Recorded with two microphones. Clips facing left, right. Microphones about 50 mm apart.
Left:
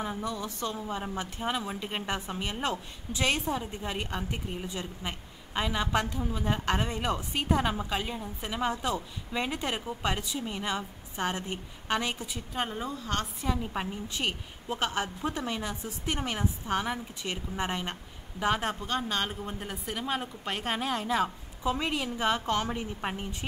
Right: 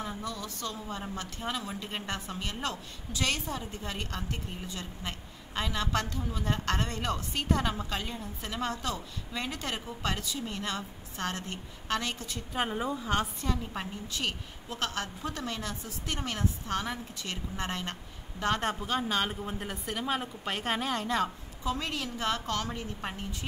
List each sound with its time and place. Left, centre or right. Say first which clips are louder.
0.0 s a woman's voice: left 3 dB; centre
12.5 s a woman's voice: right 2 dB; centre
13.4 s a woman's voice: left 2 dB; centre
21.6 s a woman's voice: left 3 dB; centre